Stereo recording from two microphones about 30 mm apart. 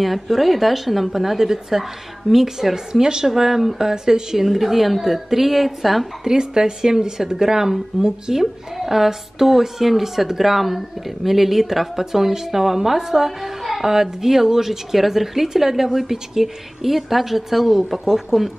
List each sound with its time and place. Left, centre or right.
0.0 s speech: centre
6.2 s a woman's voice: right